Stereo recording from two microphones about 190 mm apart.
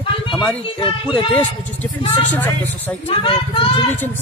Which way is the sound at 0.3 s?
5° left (ahead or behind).